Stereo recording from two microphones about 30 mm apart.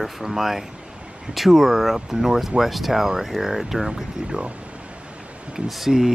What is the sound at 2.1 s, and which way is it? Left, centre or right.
Speech, centre.